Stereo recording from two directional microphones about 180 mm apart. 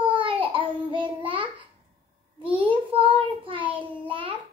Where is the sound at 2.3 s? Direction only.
30° right (ahead or behind).